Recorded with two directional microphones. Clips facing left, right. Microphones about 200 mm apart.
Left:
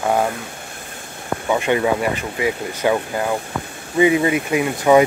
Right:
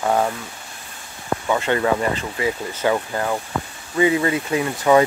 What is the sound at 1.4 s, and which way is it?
Speech, 15° left (ahead or behind).